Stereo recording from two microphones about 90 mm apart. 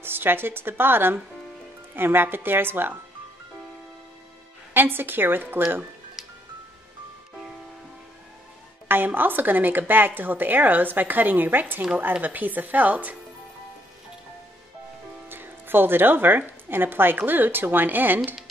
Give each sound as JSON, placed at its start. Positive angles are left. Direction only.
{"t": 0.0, "sound": "speech", "side_deg": -25}
{"t": 4.7, "sound": "speech", "side_deg": -25}
{"t": 6.2, "sound": "music", "side_deg": -5}
{"t": 8.8, "sound": "speech", "side_deg": -25}
{"t": 15.2, "sound": "speech", "side_deg": -25}